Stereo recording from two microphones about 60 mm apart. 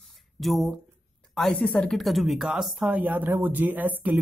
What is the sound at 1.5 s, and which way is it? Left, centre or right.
Speech, left.